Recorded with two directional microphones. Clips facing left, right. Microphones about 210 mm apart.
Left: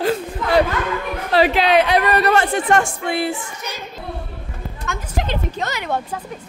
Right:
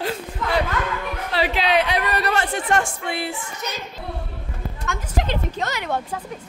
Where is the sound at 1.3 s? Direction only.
45° left (ahead or behind).